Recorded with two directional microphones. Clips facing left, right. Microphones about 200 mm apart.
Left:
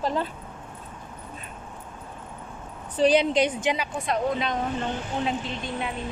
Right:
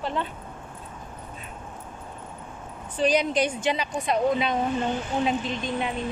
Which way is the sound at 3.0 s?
30° left (ahead or behind).